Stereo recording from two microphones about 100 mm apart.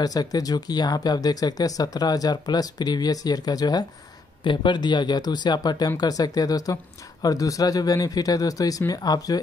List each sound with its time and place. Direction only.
0.0 s speech: 40° left (ahead or behind)